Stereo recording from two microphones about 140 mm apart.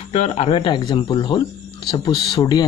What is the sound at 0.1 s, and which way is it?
Speech, 45° left (ahead or behind).